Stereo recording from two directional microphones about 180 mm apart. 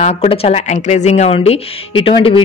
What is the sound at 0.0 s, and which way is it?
Speech, 35° left (ahead or behind).